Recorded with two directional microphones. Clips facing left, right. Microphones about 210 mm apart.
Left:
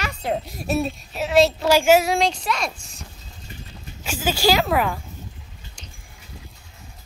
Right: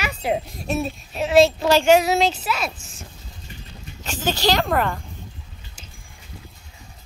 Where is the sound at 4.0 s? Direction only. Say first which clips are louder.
Left 1 dB; 10° left (ahead or behind).